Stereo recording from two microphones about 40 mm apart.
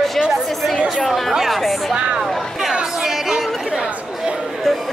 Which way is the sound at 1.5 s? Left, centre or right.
Centre.